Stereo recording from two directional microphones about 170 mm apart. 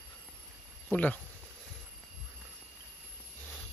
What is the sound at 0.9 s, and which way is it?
Speech, 10° left (ahead or behind).